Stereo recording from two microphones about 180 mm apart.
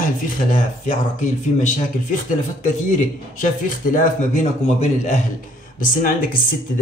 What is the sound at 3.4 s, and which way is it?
A man's voice, 45° left (ahead or behind).